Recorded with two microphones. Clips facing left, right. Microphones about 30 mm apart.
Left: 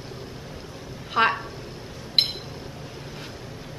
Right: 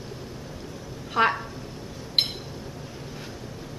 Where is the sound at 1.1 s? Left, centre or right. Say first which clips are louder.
Left 1 dB; centre.